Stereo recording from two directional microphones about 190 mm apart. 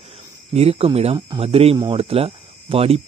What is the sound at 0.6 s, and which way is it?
Speech, 30° right (ahead or behind).